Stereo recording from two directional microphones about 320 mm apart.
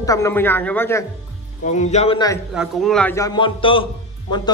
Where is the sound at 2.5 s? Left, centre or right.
Centre.